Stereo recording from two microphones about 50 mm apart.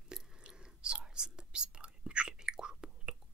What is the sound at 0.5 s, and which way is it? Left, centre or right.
Whispering, centre.